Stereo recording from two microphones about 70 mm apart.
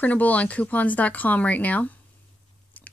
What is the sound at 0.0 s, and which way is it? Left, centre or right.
Speech, left.